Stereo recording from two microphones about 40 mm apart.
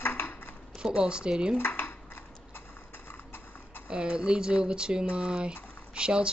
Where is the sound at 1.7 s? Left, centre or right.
Left.